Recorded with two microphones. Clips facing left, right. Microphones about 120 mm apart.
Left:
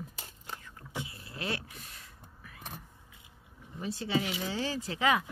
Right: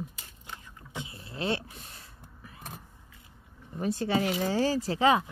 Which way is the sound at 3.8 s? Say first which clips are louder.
Right 5 dB; 50° right (ahead or behind).